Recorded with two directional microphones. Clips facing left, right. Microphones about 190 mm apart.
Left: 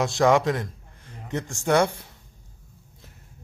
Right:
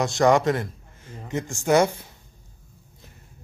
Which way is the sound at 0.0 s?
Centre (ahead or behind).